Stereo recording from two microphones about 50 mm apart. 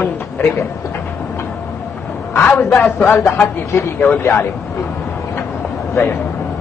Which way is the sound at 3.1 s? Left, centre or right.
Left.